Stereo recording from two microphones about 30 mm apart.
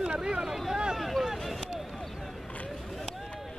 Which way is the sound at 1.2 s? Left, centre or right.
Centre.